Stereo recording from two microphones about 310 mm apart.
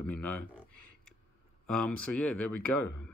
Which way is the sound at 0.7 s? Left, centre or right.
Left.